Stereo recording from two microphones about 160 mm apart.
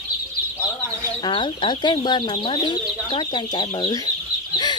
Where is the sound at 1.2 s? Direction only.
30° left (ahead or behind).